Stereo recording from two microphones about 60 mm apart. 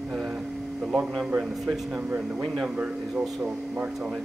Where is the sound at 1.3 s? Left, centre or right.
Centre.